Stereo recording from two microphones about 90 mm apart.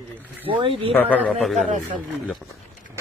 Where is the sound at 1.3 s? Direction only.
Centre (ahead or behind).